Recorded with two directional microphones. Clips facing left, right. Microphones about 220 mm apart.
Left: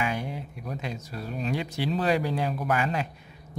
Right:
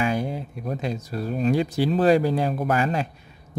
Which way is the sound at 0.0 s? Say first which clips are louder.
Right 6 dB; 35° right (ahead or behind).